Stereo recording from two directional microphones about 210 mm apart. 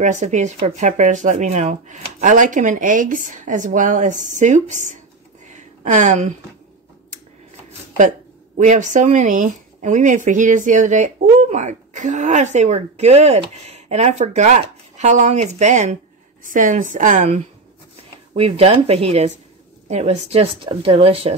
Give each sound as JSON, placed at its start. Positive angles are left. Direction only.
{"t": 0.0, "sound": "speech", "side_deg": -35}
{"t": 5.5, "sound": "a sound", "side_deg": -35}
{"t": 8.5, "sound": "speech", "side_deg": -35}
{"t": 18.3, "sound": "speech", "side_deg": -25}